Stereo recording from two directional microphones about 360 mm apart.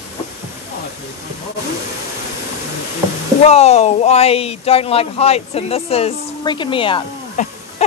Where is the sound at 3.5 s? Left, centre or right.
Centre.